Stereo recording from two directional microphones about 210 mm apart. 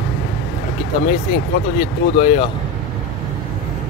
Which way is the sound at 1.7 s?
30° left (ahead or behind).